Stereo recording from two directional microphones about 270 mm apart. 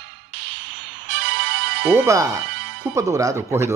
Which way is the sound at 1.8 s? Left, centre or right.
Centre.